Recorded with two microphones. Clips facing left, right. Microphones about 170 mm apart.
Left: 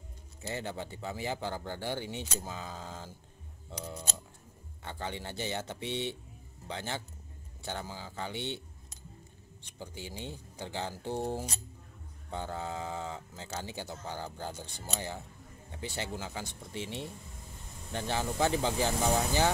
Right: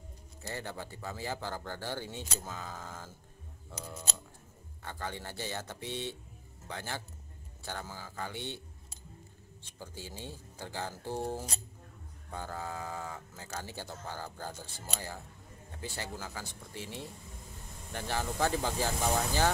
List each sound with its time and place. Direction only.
0.4 s speech: 20° left (ahead or behind)
4.8 s speech: 20° left (ahead or behind)